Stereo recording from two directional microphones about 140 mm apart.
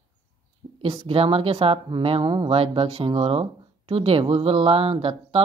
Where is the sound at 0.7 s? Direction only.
40° right (ahead or behind).